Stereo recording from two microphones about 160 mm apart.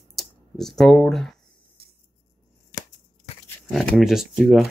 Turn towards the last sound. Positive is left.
turn(degrees=0)  # may be behind; listen again after turning